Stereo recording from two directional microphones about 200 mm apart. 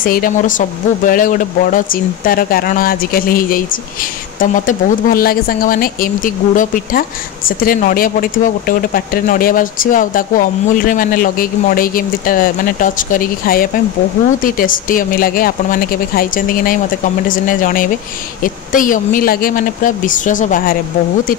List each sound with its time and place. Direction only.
0.0 s speech: 45° left (ahead or behind)